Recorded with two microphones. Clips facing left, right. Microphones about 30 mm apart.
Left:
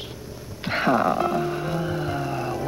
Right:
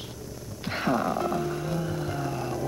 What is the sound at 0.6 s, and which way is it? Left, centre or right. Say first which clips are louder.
Music: left 6 dB; left.